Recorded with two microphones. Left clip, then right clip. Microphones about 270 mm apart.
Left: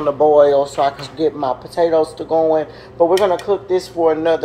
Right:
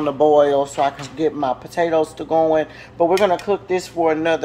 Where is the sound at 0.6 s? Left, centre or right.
Right.